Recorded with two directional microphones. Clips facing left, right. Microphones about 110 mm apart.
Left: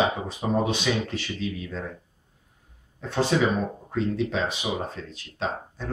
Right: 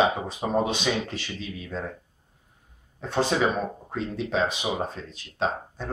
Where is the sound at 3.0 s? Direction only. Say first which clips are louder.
Left 1 dB; 25° right (ahead or behind).